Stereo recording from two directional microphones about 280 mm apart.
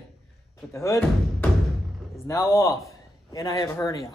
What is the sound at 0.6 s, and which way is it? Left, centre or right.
Speech, centre.